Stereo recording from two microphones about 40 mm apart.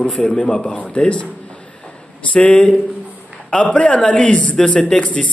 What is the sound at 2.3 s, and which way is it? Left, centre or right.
A man's voice, left.